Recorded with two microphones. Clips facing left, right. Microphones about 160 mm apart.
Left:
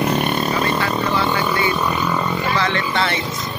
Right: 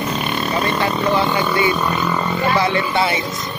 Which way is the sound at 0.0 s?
55° left (ahead or behind).